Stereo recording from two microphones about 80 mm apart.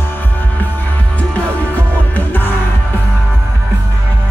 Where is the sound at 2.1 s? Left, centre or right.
Left.